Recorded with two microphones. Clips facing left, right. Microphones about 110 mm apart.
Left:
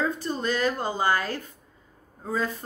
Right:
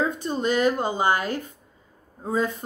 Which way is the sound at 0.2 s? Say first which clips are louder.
Right 4 dB; 20° right (ahead or behind).